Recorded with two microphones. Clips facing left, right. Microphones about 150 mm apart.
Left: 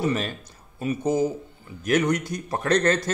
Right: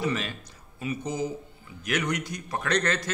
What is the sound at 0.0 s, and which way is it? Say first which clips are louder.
A man's voice: left 4 dB; 45° left (ahead or behind).